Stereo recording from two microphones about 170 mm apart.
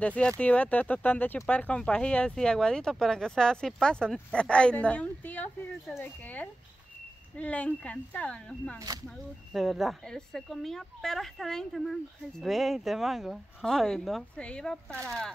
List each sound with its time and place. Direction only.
0.0 s speech: 5° left (ahead or behind)
8.7 s speech: 20° right (ahead or behind)
9.5 s speech: centre (ahead or behind)